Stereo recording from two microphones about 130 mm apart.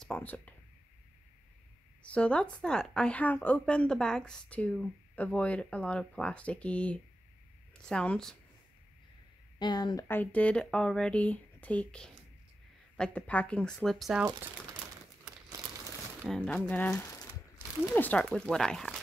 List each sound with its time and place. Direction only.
0.0 s speech: 10° left (ahead or behind)
2.0 s a woman's voice: 10° left (ahead or behind)
9.6 s a woman's voice: 35° left (ahead or behind)
10.0 s a woman's voice: 15° left (ahead or behind)
16.3 s a woman's voice: 10° left (ahead or behind)